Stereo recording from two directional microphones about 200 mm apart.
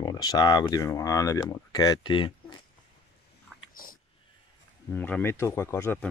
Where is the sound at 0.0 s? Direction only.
20° left (ahead or behind).